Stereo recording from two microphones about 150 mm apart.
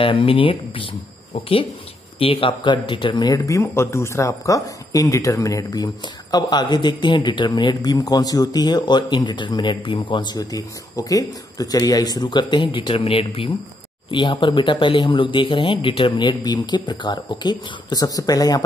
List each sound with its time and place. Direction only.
0.0 s speech: 35° left (ahead or behind)